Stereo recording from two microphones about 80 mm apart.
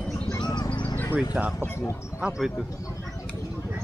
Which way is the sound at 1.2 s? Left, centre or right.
Centre.